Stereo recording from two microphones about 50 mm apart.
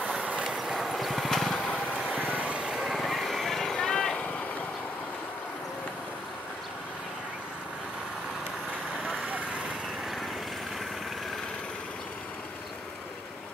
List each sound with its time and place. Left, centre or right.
0.5 s vehicle: centre
2.3 s vehicle: right
2.6 s vehicle: centre
3.0 s vehicle: centre